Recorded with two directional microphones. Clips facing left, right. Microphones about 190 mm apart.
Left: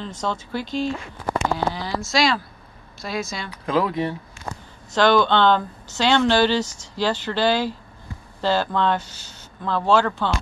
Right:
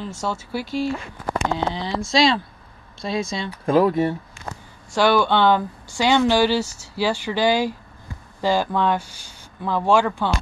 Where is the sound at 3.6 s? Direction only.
45° right (ahead or behind).